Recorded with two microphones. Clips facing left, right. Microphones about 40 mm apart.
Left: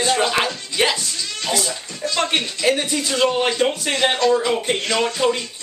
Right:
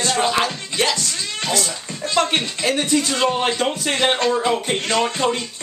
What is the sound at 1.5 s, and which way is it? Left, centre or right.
Speech, centre.